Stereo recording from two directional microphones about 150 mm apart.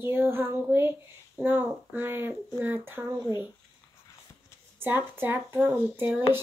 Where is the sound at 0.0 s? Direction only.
15° right (ahead or behind).